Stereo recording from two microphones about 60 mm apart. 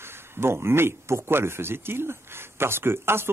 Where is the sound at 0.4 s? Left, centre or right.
Right.